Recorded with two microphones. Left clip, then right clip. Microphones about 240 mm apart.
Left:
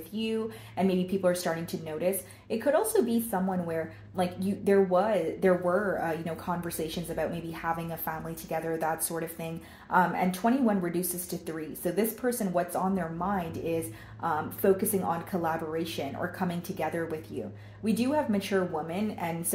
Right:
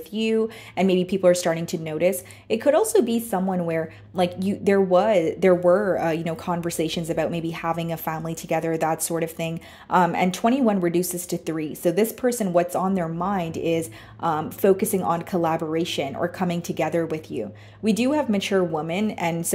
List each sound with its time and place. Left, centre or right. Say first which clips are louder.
0.1 s speech: right 10 dB; right